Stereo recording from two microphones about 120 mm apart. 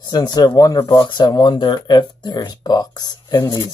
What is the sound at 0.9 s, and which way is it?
Speech, 40° left (ahead or behind).